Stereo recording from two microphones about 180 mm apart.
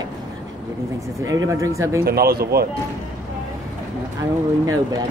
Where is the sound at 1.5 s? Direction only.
15° right (ahead or behind).